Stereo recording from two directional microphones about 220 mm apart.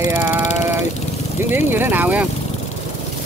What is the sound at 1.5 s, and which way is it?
Speech, 10° right (ahead or behind).